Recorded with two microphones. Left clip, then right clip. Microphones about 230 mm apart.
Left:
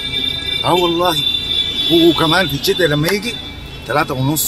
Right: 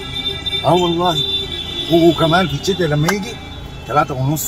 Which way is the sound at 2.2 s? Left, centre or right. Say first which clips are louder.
Left 1 dB; left.